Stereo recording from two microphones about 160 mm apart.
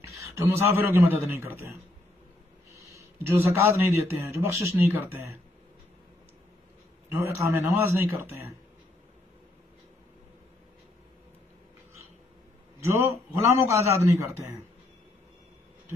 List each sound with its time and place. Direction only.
0.4 s a man's voice: 15° right (ahead or behind)
7.1 s a man's voice: 15° right (ahead or behind)
12.8 s a man's voice: 15° right (ahead or behind)